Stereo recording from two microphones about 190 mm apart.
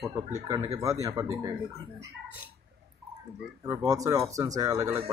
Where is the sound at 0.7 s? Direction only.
15° right (ahead or behind).